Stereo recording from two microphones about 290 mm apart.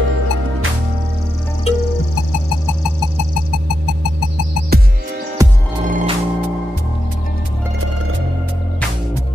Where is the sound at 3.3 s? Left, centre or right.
Right.